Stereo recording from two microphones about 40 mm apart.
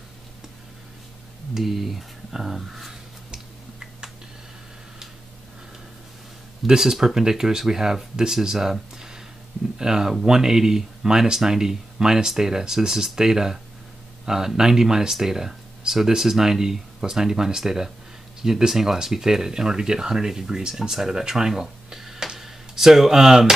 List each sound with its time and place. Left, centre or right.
1.5 s speech: centre
6.8 s speech: centre
9.8 s speech: centre